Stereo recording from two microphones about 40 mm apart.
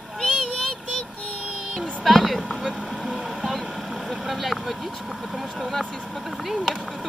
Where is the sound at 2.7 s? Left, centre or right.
Centre.